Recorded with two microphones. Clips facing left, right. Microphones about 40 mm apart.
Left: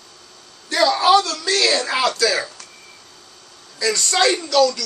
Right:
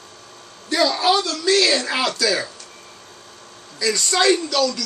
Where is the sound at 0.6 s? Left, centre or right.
Centre.